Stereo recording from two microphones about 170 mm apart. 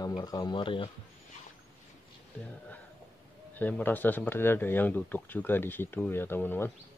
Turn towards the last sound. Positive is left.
turn(degrees=10)  # may be behind; listen again after turning